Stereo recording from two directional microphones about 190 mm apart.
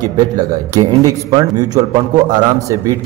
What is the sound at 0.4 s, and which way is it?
A man's voice, 20° right (ahead or behind).